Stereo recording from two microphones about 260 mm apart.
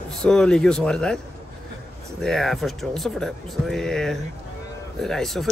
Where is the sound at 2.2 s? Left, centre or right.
Centre.